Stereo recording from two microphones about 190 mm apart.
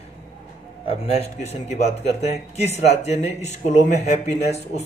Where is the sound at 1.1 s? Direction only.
35° left (ahead or behind).